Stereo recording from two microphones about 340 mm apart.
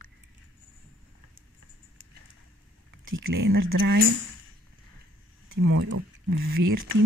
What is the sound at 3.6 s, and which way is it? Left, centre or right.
Speech, right.